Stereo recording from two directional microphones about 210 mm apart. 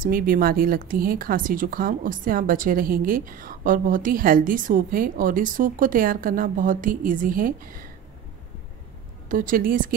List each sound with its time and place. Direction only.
0.0 s speech: 45° right (ahead or behind)
9.3 s speech: 40° right (ahead or behind)